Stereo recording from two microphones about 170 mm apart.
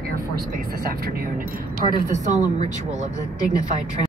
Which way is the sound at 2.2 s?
45° right (ahead or behind).